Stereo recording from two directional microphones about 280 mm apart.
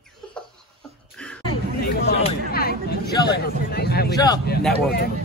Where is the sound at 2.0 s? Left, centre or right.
Left.